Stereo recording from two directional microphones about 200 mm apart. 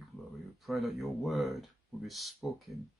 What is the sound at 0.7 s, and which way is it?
Speech, centre (ahead or behind).